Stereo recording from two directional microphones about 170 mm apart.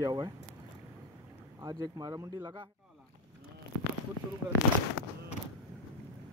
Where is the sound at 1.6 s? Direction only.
20° right (ahead or behind).